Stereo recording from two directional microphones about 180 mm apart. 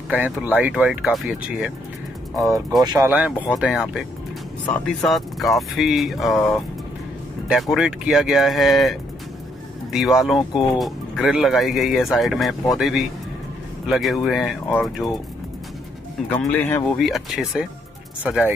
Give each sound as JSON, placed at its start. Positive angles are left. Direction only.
{"t": 0.1, "sound": "speech", "side_deg": -10}
{"t": 2.8, "sound": "speech", "side_deg": -20}
{"t": 3.1, "sound": "speech", "side_deg": -10}
{"t": 7.4, "sound": "speech", "side_deg": 0}
{"t": 9.9, "sound": "speech", "side_deg": 0}
{"t": 16.3, "sound": "speech", "side_deg": 10}
{"t": 17.0, "sound": "speech", "side_deg": 0}